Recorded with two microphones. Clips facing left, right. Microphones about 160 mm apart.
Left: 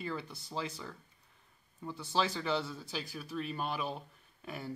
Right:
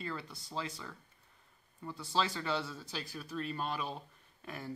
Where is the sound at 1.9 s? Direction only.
Centre (ahead or behind).